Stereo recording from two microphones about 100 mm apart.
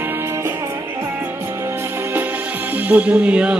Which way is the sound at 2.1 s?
20° right (ahead or behind).